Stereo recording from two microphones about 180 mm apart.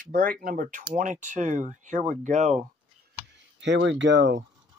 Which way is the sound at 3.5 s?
80° right.